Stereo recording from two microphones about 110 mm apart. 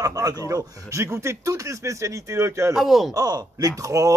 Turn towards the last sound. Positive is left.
turn(degrees=-30)  # may be behind; listen again after turning